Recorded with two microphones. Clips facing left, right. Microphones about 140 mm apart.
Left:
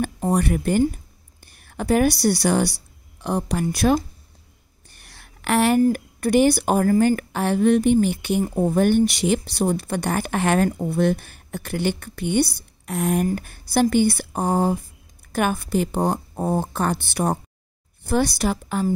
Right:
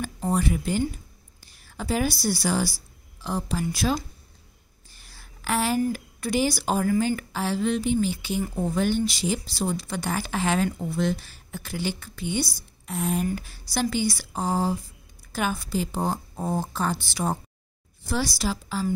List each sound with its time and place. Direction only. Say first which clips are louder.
0.0 s a woman's voice: left 4 dB; 60° left (ahead or behind)
4.9 s a sound: left 2 dB; 65° left (ahead or behind)
5.8 s a woman's voice: left 7 dB; 50° left (ahead or behind)